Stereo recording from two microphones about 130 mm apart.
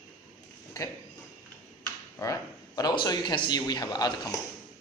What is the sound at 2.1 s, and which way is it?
A man's voice, 25° left (ahead or behind).